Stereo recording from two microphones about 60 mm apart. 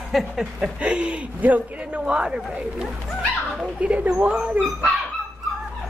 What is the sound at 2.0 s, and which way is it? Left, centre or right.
Speech, centre.